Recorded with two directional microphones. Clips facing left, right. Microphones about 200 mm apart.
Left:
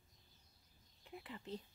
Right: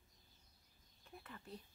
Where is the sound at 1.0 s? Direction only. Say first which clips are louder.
Left 5 dB; 15° left (ahead or behind).